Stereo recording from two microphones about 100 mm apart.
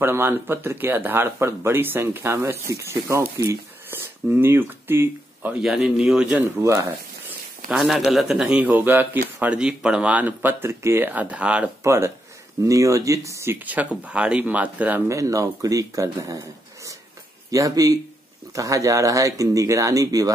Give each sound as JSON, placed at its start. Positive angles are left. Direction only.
{"t": 0.0, "sound": "speech", "side_deg": -20}
{"t": 5.6, "sound": "speech", "side_deg": -5}
{"t": 6.6, "sound": "speech", "side_deg": -30}
{"t": 7.7, "sound": "speech", "side_deg": 0}
{"t": 11.8, "sound": "speech", "side_deg": -25}
{"t": 14.0, "sound": "speech", "side_deg": -10}
{"t": 15.0, "sound": "speech", "side_deg": -35}